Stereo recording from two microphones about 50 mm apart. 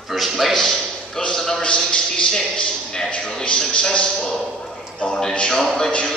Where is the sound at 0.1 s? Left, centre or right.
Centre.